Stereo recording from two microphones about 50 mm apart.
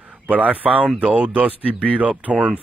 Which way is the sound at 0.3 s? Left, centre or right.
Right.